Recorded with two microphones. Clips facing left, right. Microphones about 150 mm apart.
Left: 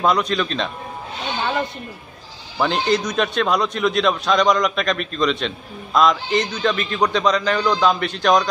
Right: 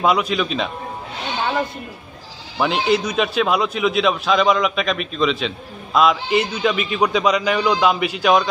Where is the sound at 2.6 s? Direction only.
5° right (ahead or behind).